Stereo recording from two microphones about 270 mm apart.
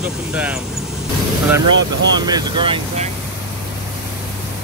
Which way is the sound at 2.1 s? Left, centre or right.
Centre.